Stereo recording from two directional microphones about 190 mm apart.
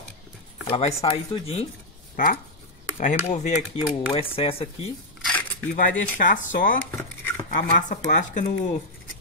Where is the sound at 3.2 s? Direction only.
35° left (ahead or behind).